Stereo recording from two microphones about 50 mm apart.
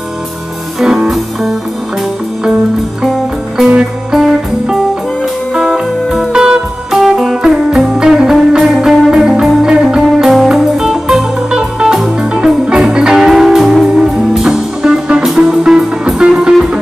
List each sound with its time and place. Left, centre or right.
0.7 s music: centre
4.1 s music: centre
6.0 s music: centre